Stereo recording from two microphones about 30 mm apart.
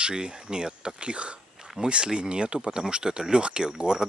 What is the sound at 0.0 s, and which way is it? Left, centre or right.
Speech, right.